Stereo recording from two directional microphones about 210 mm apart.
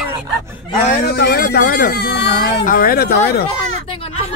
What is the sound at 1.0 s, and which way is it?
Speech, 50° left (ahead or behind).